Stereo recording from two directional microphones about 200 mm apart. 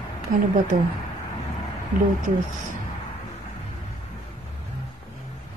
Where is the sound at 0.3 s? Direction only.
45° right (ahead or behind).